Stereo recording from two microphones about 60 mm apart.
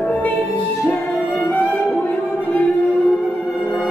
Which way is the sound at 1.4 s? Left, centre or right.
Left.